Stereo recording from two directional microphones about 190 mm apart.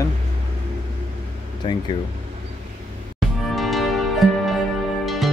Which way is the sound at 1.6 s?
25° left (ahead or behind).